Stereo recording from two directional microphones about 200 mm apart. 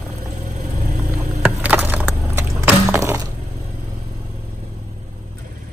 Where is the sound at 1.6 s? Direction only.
10° right (ahead or behind).